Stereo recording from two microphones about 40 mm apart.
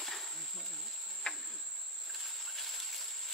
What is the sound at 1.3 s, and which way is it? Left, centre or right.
Cricket, centre.